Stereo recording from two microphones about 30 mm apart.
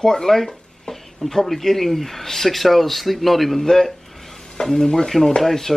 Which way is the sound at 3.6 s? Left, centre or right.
Centre.